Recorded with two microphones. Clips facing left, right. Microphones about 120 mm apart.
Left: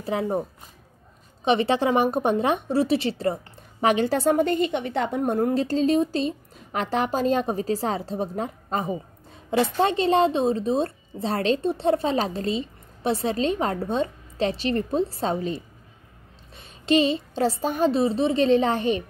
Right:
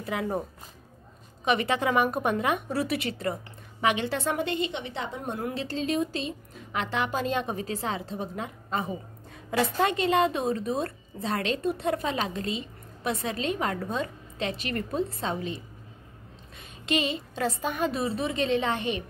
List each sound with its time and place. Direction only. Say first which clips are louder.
0.0 s a woman's voice: left 4 dB; 30° left (ahead or behind)
1.4 s a woman's voice: left 5 dB; 30° left (ahead or behind)
9.5 s a woman's voice: left 4 dB; 30° left (ahead or behind)